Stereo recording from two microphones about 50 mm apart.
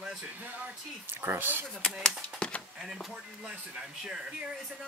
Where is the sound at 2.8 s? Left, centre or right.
Centre.